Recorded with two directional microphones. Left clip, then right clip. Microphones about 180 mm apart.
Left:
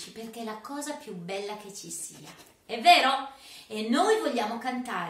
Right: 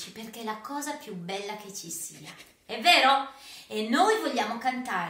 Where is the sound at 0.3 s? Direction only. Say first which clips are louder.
Right 4 dB; centre (ahead or behind).